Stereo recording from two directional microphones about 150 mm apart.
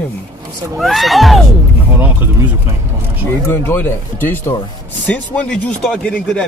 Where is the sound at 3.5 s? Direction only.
15° left (ahead or behind).